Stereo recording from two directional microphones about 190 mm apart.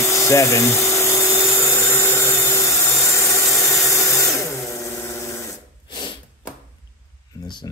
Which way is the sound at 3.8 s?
15° left (ahead or behind).